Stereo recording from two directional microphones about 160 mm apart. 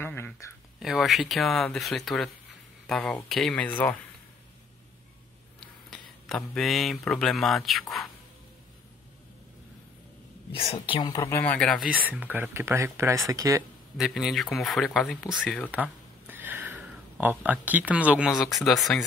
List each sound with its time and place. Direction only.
0.0 s a sound: 15° left (ahead or behind)
0.7 s speech: centre (ahead or behind)
5.9 s speech: centre (ahead or behind)
10.5 s speech: 35° left (ahead or behind)
11.0 s speech: 25° left (ahead or behind); by 13.7 s 20° right (ahead or behind)
13.9 s speech: centre (ahead or behind)
15.7 s a sound: 10° right (ahead or behind)
17.2 s speech: 10° right (ahead or behind)